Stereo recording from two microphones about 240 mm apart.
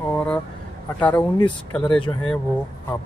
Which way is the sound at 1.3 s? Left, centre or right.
Centre.